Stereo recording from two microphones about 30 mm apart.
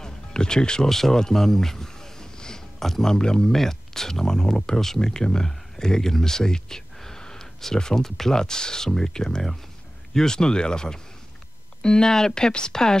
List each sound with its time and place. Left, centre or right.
0.0 s music: left
0.8 s a sound: centre
2.8 s speech: centre
3.1 s speech: left
3.5 s speech: centre
5.5 s a sound: left
7.7 s speech: centre